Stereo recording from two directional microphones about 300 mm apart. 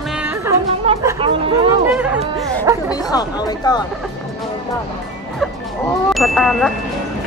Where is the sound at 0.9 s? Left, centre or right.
Centre.